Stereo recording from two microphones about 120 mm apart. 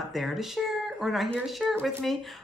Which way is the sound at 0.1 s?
Centre (ahead or behind).